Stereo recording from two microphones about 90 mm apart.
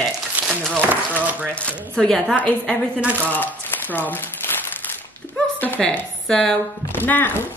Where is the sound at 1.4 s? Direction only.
15° left (ahead or behind).